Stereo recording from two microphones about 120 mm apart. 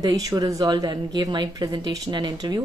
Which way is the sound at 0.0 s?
30° right (ahead or behind).